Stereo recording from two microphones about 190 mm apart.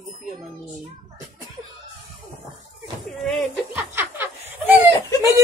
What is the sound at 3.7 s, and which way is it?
Snicker, 10° right (ahead or behind).